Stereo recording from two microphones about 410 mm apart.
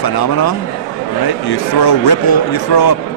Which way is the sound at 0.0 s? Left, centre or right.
Left.